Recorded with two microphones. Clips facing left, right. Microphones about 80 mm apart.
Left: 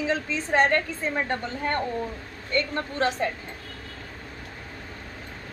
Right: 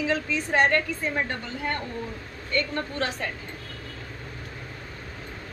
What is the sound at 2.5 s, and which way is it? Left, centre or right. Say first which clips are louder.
Speech: left 1 dB; left.